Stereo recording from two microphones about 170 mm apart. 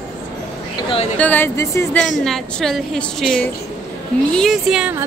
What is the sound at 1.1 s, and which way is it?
Speech, 10° left (ahead or behind).